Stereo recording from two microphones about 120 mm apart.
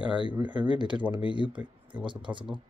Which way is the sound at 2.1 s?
40° right (ahead or behind).